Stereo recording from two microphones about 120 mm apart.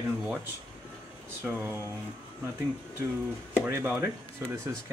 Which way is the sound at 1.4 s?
15° right (ahead or behind).